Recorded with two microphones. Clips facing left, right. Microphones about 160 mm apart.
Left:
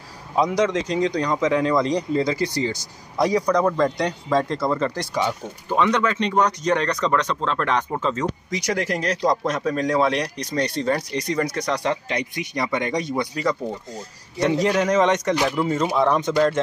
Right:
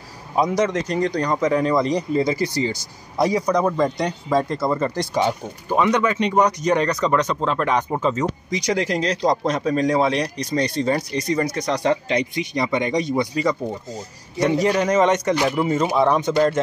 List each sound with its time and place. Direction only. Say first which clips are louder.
1.1 s speech: right 1 dB; 5° right (ahead or behind)
11.8 s speech: right 4 dB; 35° right (ahead or behind)
12.4 s speech: right 3 dB; 20° right (ahead or behind)
14.5 s speech: right 1 dB; centre (ahead or behind)